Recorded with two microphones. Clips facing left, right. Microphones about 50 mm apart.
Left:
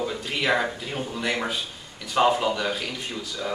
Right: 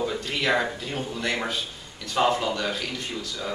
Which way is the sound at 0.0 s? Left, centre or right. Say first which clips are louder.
Even; centre.